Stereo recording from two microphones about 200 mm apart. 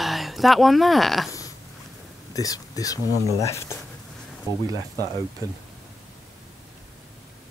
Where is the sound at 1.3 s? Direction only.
15° left (ahead or behind).